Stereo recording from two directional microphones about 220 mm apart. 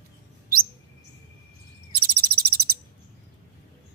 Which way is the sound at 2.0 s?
45° right (ahead or behind).